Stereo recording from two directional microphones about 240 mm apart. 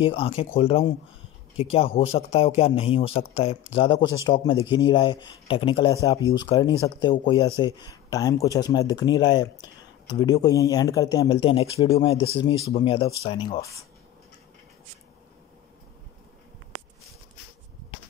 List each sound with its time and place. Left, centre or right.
0.0 s speech: left